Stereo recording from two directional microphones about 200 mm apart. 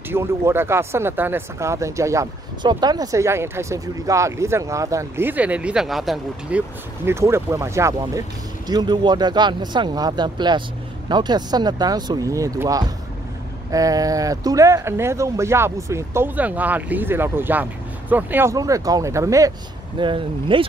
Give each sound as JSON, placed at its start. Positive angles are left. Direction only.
{"t": 0.1, "sound": "speech", "side_deg": -10}
{"t": 7.1, "sound": "speech", "side_deg": -15}